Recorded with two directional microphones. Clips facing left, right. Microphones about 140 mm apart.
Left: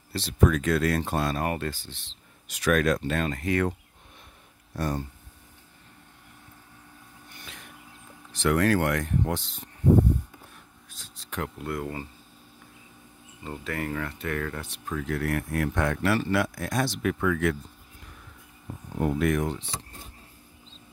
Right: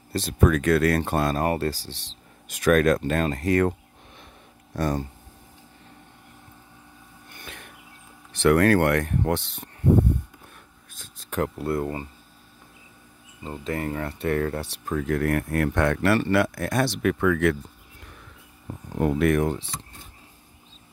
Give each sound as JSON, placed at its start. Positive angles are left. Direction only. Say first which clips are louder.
{"t": 0.1, "sound": "speech", "louder": "right 2 dB", "side_deg": -45}
{"t": 2.4, "sound": "speech", "louder": "right 4 dB", "side_deg": -50}
{"t": 4.7, "sound": "speech", "louder": "right 4 dB", "side_deg": -90}
{"t": 8.3, "sound": "speech", "louder": "right 5 dB", "side_deg": -60}
{"t": 11.0, "sound": "speech", "louder": "right 7 dB", "side_deg": -50}
{"t": 13.4, "sound": "speech", "louder": "right 3 dB", "side_deg": -25}
{"t": 18.9, "sound": "speech", "louder": "right 4 dB", "side_deg": -75}